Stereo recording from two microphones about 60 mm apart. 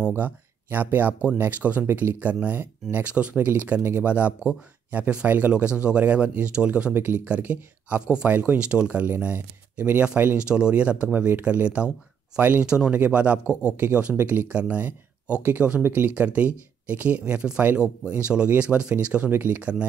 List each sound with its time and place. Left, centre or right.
0.2 s a sound: right
0.9 s speech: right
6.9 s speech: right
10.3 s speech: centre
12.6 s speech: centre
13.5 s speech: left
14.1 s speech: right